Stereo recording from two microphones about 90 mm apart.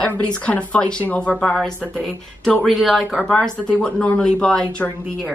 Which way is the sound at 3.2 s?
10° left (ahead or behind).